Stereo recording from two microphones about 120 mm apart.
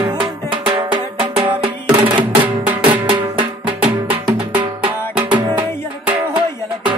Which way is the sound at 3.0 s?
45° right (ahead or behind).